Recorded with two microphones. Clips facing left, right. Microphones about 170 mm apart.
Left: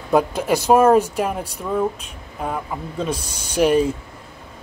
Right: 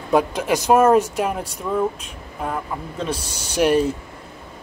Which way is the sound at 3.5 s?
5° right (ahead or behind).